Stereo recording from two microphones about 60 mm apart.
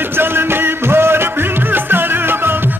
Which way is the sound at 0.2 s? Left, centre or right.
Right.